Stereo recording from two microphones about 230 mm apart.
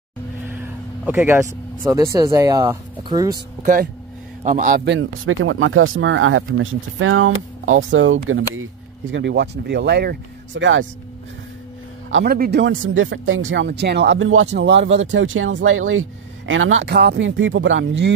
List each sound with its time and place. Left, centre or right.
0.5 s speech: centre
3.6 s a man's voice: right
4.8 s speech: right
9.1 s speech: right
12.1 s speech: right